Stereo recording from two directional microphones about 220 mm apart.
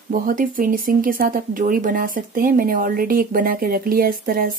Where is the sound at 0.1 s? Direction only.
40° right (ahead or behind).